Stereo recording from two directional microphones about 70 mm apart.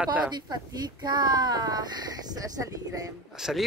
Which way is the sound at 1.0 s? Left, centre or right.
Right.